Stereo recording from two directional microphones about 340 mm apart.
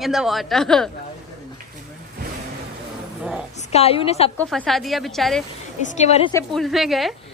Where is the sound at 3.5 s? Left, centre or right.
Centre.